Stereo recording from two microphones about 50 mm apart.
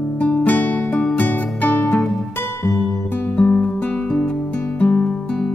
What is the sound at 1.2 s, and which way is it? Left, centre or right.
Music, left.